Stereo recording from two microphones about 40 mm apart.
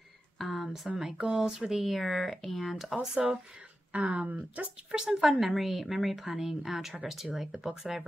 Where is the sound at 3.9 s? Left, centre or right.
Right.